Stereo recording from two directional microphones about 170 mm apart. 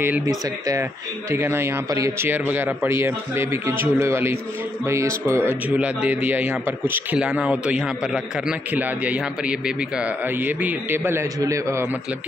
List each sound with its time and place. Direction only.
0.0 s a man's voice: 15° right (ahead or behind)